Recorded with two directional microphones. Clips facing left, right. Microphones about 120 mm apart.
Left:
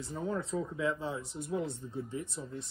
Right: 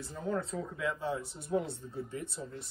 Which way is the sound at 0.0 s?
25° left (ahead or behind).